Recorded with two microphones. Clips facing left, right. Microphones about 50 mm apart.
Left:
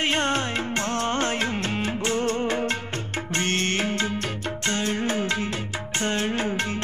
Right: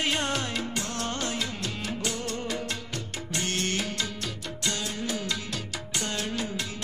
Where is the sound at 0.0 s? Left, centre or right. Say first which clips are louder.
Left 5 dB; left.